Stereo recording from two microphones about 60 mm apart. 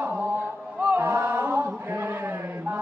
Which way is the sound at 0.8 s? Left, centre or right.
Right.